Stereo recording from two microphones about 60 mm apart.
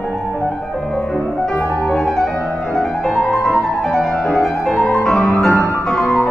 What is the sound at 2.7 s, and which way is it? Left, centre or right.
Music, centre.